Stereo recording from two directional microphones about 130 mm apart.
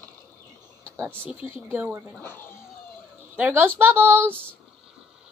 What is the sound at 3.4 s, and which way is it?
Speech, 15° right (ahead or behind).